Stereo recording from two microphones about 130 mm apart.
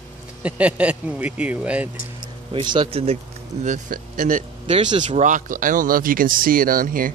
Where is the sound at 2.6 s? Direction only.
40° right (ahead or behind).